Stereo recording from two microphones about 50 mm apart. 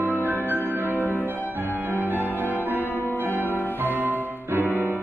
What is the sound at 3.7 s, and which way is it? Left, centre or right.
Music, right.